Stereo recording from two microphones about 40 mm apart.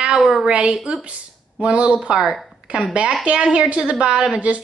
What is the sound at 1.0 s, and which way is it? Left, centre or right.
Speech, right.